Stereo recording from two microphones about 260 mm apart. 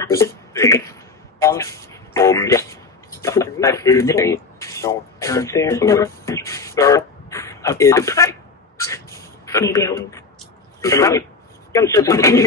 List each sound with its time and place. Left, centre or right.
0.0 s speech: centre
1.4 s a sound: centre
10.8 s a man's voice: centre